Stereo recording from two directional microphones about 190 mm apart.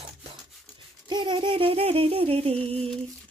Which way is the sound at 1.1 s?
25° right (ahead or behind).